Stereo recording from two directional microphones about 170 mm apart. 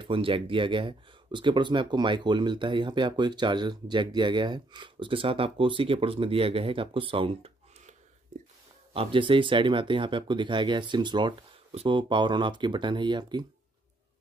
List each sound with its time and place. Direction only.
0.0 s speech: 30° right (ahead or behind)
8.9 s speech: 30° right (ahead or behind)